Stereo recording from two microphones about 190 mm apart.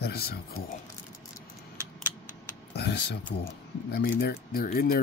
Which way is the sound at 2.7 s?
60° left (ahead or behind).